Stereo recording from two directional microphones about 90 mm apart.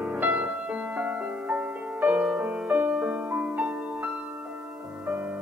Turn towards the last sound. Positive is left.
turn(degrees=-20)  # may be behind; listen again after turning